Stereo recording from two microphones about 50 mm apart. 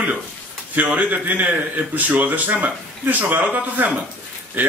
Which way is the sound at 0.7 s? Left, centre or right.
Right.